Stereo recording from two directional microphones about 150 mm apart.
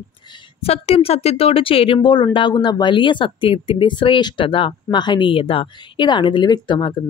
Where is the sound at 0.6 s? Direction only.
40° left (ahead or behind).